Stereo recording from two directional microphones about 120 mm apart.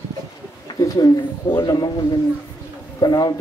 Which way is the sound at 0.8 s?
35° left (ahead or behind).